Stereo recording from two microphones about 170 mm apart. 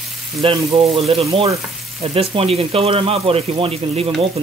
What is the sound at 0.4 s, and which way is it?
Speech, 30° right (ahead or behind).